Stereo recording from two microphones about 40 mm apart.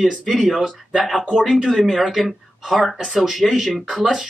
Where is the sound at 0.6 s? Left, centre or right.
Centre.